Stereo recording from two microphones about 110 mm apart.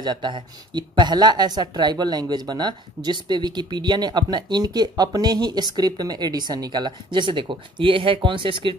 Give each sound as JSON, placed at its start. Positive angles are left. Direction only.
{"t": 0.0, "sound": "speech", "side_deg": -45}